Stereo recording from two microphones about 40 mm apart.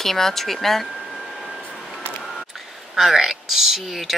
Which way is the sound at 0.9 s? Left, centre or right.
Centre.